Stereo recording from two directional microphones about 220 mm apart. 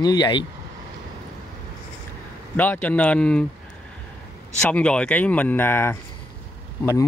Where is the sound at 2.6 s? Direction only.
5° left (ahead or behind).